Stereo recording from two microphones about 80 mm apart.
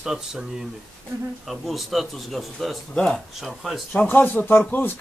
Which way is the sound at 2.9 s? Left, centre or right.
Centre.